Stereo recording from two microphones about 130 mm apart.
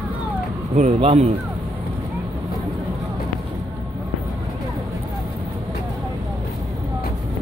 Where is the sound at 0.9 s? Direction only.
50° right (ahead or behind).